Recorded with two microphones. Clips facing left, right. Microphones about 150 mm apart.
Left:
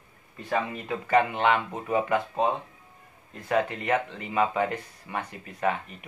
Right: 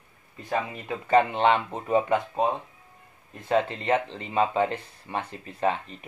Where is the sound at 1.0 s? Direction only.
30° right (ahead or behind).